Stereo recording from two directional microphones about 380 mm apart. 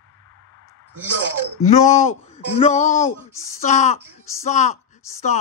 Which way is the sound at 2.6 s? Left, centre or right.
Centre.